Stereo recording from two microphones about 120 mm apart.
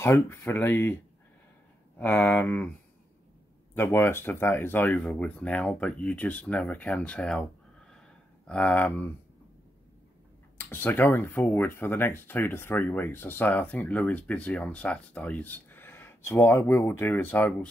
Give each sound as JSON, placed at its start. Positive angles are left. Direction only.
{"t": 0.0, "sound": "speech", "side_deg": 20}
{"t": 2.0, "sound": "speech", "side_deg": 15}
{"t": 3.7, "sound": "speech", "side_deg": 20}
{"t": 8.5, "sound": "speech", "side_deg": 10}
{"t": 10.6, "sound": "speech", "side_deg": 15}